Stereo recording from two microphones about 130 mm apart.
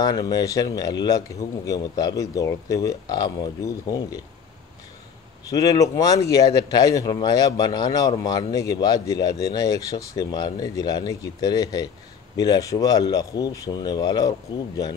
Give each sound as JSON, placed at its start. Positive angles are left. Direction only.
{"t": 0.0, "sound": "speech", "side_deg": 30}
{"t": 5.5, "sound": "speech", "side_deg": 25}